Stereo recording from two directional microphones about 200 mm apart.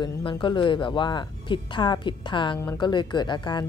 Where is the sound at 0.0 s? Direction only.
25° left (ahead or behind).